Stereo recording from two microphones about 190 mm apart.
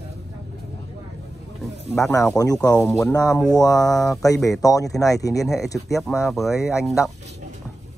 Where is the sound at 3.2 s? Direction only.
5° left (ahead or behind).